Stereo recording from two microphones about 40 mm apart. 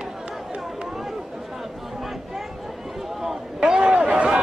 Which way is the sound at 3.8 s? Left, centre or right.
Right.